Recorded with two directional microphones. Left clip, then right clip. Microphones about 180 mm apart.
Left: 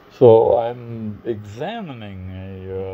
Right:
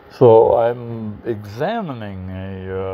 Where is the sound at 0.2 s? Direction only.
25° right (ahead or behind).